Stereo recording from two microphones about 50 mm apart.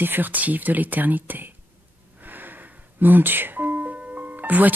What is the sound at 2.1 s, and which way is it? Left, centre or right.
Music, right.